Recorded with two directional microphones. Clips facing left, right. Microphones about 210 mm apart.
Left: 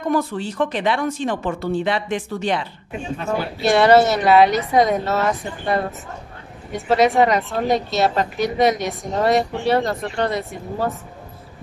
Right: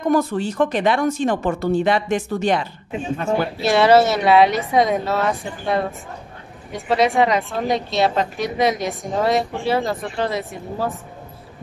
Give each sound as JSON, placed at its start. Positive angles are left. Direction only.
{"t": 0.1, "sound": "a woman's voice", "side_deg": -45}
{"t": 3.6, "sound": "a woman's voice", "side_deg": 0}